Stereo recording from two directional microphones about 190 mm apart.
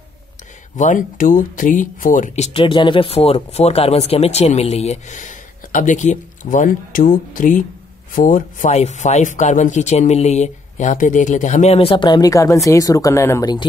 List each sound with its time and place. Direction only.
0.7 s speech: 40° left (ahead or behind); by 13.7 s 20° left (ahead or behind)